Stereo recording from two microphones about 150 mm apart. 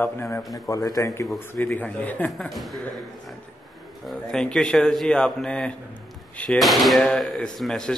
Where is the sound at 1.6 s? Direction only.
10° left (ahead or behind).